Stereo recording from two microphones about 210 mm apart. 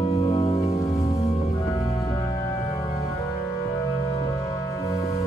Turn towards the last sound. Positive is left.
turn(degrees=15)  # may be behind; listen again after turning